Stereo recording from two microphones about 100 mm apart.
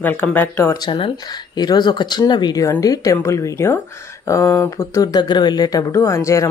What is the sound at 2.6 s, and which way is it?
Speech, 35° left (ahead or behind).